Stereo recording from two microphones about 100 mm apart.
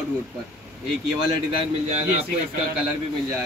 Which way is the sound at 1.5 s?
90° right.